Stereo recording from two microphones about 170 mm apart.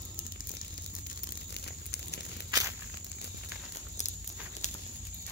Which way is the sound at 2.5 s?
20° right (ahead or behind).